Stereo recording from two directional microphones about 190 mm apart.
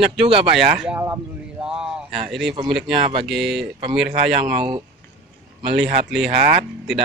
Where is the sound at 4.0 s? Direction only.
50° right (ahead or behind).